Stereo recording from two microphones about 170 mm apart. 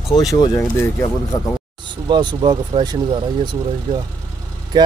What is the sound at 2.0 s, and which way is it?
Speech, 25° right (ahead or behind).